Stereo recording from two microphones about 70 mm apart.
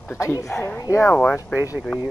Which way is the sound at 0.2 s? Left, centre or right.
Left.